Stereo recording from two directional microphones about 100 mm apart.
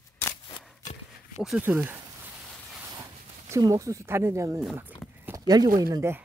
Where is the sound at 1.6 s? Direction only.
20° right (ahead or behind).